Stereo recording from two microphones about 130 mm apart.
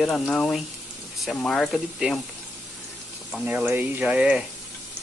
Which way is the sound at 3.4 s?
15° right (ahead or behind).